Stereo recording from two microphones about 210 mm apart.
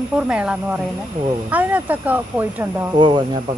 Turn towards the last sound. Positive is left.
turn(degrees=-20)  # may be behind; listen again after turning